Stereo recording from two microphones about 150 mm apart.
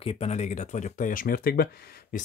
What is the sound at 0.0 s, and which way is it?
Speech, 40° left (ahead or behind).